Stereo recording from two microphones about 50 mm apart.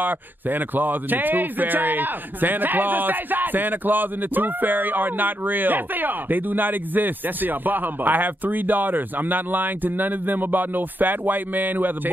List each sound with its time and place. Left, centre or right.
0.0 s speech: right